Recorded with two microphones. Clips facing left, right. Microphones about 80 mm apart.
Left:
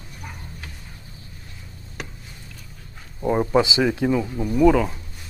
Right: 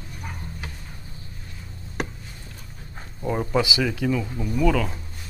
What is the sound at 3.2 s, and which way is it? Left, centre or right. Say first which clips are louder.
Speech: left 4 dB; centre.